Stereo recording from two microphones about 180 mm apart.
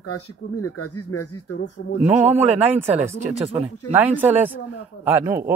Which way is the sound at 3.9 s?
10° right (ahead or behind).